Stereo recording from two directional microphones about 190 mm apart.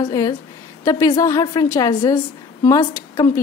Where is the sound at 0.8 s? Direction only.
20° left (ahead or behind).